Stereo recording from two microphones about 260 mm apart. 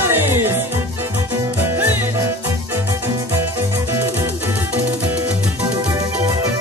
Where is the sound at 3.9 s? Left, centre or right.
Centre.